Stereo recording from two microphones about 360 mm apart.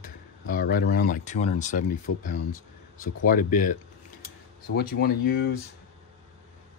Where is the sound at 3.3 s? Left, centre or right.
Left.